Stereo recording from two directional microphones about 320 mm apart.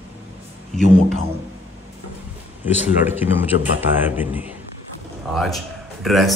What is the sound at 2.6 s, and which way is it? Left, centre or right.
Speech, centre.